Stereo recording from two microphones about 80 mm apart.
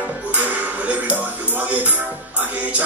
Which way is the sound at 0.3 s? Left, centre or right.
Right.